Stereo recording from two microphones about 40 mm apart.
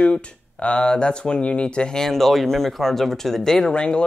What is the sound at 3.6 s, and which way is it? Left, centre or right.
Speech, left.